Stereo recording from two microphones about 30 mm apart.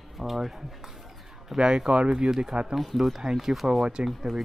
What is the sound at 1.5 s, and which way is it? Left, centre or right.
Speech, right.